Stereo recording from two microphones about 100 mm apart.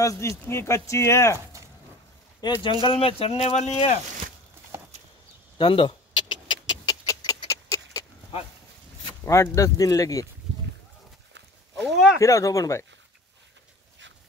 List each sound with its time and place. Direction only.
0.0 s speech: 35° left (ahead or behind)
2.4 s speech: 45° left (ahead or behind)
2.8 s speech: 60° left (ahead or behind); by 4.0 s 90° left
5.6 s vehicle: 55° left (ahead or behind)
7.1 s a sound: 40° left (ahead or behind)
9.2 s speech: 30° left (ahead or behind)
11.7 s speech: 5° right (ahead or behind)
12.2 s speech: 30° left (ahead or behind)